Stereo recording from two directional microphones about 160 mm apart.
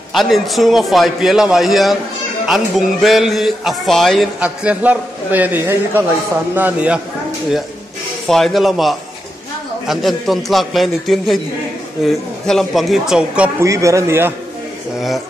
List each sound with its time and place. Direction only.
0.1 s speech: centre (ahead or behind)
8.3 s speech: centre (ahead or behind)
13.6 s speech: 20° right (ahead or behind)